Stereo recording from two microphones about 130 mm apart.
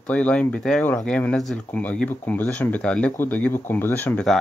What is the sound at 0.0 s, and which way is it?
Speech, 10° left (ahead or behind).